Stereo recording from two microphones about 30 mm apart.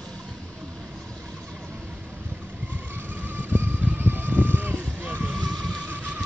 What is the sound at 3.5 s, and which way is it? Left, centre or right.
Vehicle, right.